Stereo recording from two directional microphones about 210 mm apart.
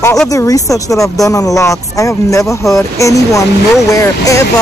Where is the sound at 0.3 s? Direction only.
15° left (ahead or behind).